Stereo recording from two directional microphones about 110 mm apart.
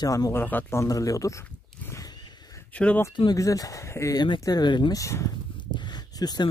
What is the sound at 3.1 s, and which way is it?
Speech, 45° left (ahead or behind).